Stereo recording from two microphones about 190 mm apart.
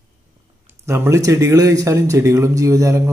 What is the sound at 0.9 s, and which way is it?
Speech, 15° right (ahead or behind).